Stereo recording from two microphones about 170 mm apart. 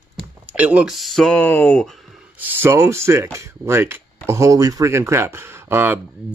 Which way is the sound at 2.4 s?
10° right (ahead or behind).